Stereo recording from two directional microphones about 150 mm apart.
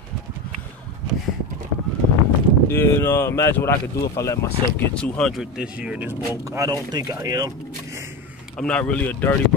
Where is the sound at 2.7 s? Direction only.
15° left (ahead or behind).